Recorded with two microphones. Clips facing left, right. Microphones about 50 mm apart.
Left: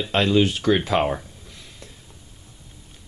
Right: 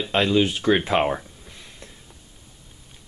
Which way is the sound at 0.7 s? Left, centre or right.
Centre.